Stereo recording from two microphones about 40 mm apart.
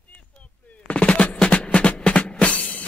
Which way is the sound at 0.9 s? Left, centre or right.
Left.